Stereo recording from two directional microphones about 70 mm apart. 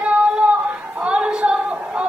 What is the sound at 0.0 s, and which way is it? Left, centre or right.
Child singing, centre.